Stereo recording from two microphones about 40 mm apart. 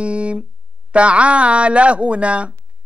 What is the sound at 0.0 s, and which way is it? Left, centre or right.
A man's voice, right.